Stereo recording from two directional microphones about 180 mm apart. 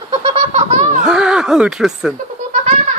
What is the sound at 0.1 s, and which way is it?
Laughter, 35° right (ahead or behind).